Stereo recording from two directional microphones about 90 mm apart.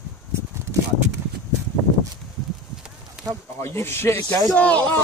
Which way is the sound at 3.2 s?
5° right (ahead or behind).